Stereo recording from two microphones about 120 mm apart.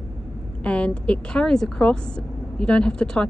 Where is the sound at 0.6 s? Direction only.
10° left (ahead or behind).